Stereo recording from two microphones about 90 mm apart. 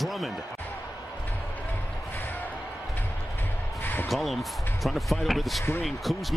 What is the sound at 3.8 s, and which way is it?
Basketball bounce, 20° left (ahead or behind).